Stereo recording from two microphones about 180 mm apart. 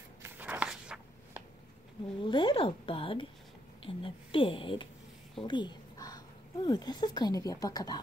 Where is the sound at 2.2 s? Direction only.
25° left (ahead or behind).